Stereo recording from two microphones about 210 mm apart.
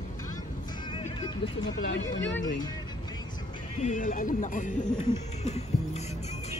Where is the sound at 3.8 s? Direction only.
40° left (ahead or behind).